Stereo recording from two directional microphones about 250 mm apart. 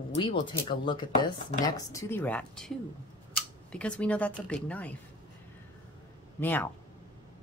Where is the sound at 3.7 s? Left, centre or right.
Centre.